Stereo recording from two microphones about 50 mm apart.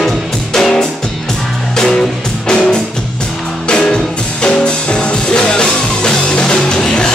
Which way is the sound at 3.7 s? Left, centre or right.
Centre.